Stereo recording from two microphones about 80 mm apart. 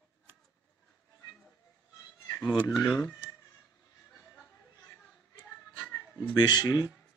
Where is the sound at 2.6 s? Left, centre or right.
Left.